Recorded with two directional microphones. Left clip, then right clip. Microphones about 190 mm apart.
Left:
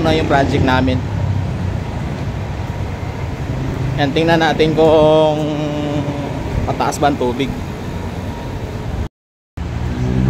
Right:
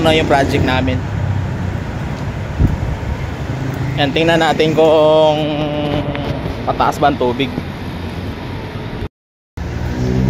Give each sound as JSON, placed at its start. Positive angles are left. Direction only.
{"t": 0.0, "sound": "speech", "side_deg": 0}
{"t": 0.7, "sound": "speech", "side_deg": 30}
{"t": 4.0, "sound": "speech", "side_deg": 0}
{"t": 6.7, "sound": "speech", "side_deg": 10}